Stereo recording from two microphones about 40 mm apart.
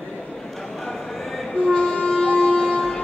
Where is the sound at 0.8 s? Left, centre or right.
Centre.